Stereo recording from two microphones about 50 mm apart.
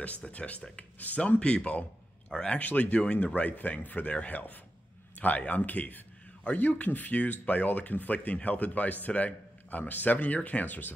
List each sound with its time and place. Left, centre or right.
0.0 s speech: left
1.4 s a man's voice: left
2.6 s speech: left